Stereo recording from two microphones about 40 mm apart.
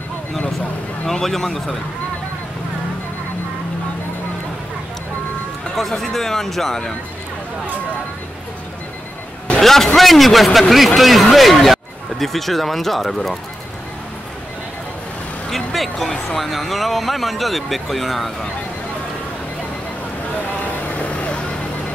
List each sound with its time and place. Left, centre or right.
1.0 s speech: centre
5.8 s speech: centre
9.6 s a sound: centre
9.9 s speech: centre
15.5 s speech: centre
20.6 s vehicle: left